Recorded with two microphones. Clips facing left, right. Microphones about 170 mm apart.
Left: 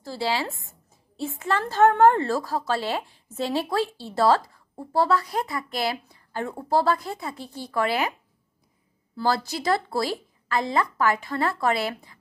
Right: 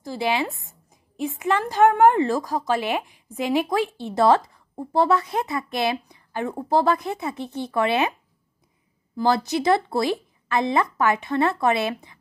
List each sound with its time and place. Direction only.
0.0 s a woman's voice: 20° right (ahead or behind)
9.1 s a woman's voice: 20° right (ahead or behind)